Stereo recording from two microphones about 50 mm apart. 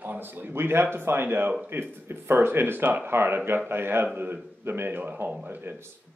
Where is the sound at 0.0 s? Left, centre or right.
Right.